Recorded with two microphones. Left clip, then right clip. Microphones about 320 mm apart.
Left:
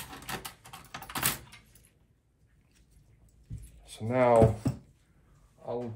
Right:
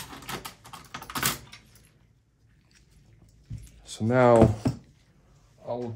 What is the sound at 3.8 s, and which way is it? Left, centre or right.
Speech, right.